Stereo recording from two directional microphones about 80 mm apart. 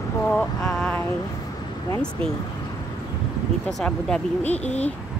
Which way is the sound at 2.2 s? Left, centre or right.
Centre.